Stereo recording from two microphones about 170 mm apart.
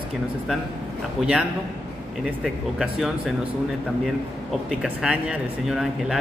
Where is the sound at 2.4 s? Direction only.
Centre (ahead or behind).